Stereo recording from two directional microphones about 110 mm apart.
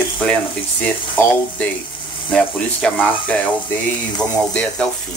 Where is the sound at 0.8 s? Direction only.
15° left (ahead or behind).